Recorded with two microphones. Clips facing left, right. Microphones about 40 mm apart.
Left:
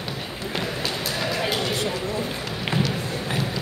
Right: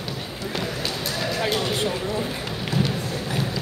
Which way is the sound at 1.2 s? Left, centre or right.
Centre.